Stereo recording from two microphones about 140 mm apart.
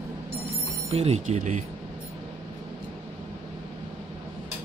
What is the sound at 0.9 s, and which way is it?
Speech, 45° right (ahead or behind).